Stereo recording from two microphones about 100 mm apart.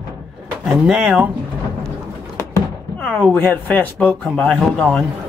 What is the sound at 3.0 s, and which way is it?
Speech, 10° left (ahead or behind).